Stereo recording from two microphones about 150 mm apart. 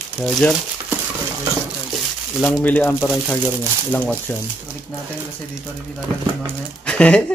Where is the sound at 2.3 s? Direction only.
5° left (ahead or behind).